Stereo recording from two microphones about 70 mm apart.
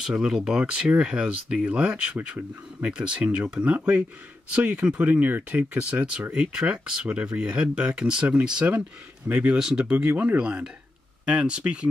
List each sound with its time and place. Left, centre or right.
0.0 s speech: centre